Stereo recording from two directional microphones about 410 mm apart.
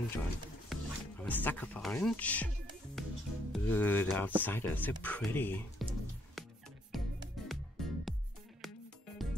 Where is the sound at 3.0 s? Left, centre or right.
Centre.